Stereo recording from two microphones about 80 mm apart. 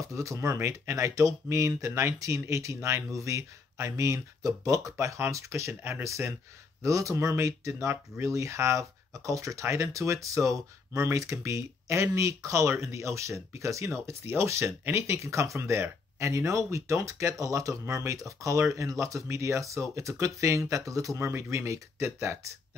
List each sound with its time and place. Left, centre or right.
0.0 s speech: right